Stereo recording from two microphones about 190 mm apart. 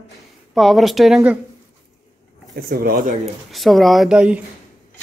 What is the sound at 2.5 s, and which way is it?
Speech, 50° right (ahead or behind).